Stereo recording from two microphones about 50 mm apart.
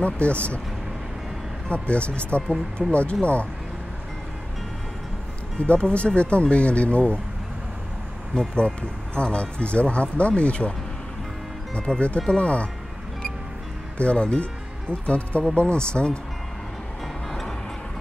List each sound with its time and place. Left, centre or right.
0.0 s speech: left
1.7 s speech: left
5.6 s speech: left
8.4 s speech: left
11.7 s speech: centre
13.9 s speech: left
17.3 s music: centre